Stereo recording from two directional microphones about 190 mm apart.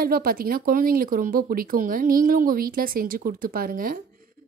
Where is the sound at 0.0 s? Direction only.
50° right (ahead or behind).